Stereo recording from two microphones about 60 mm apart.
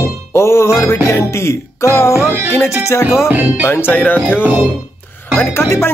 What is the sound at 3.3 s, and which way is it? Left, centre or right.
Speech, right.